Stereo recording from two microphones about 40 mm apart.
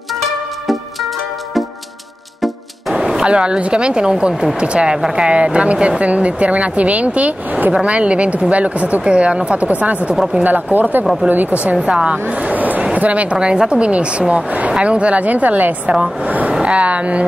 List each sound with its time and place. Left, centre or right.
2.9 s a sound: centre
3.3 s a woman's voice: right
11.6 s speech: right
15.9 s a woman's voice: right